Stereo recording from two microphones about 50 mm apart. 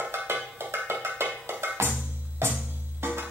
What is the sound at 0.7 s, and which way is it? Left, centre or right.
Wood block, right.